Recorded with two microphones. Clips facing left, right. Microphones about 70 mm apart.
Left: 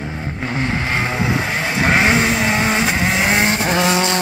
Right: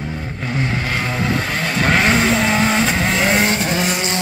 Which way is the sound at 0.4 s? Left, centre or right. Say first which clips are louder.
Left 1 dB; left.